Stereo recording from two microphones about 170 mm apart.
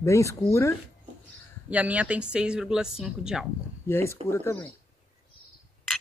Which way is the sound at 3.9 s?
15° left (ahead or behind).